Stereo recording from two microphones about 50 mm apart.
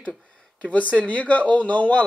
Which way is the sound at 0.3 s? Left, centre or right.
Left.